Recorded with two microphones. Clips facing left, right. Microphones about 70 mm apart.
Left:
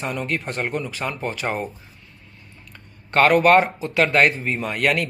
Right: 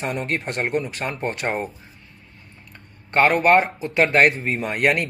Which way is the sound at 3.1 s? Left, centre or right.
Right.